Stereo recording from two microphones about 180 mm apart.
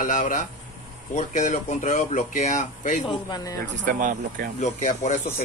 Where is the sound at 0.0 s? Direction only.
45° left (ahead or behind).